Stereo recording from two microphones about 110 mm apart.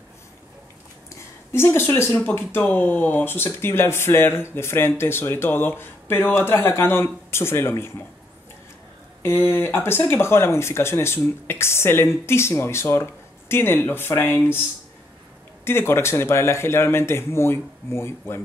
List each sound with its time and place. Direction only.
1.5 s speech: 20° left (ahead or behind)
9.2 s speech: 20° left (ahead or behind)
15.6 s speech: 20° left (ahead or behind)